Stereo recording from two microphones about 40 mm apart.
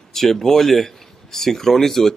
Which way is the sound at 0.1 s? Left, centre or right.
Centre.